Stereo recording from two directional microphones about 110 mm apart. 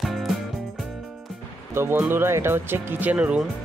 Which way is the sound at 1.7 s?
20° right (ahead or behind).